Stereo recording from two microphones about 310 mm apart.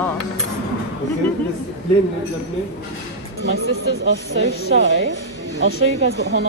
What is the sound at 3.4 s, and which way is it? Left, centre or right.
A woman's voice, right.